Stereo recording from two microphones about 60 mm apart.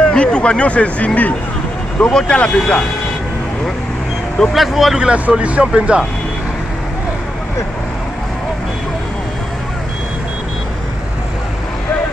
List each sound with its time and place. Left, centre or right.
0.1 s speech: centre
4.4 s speech: centre
4.9 s speech: centre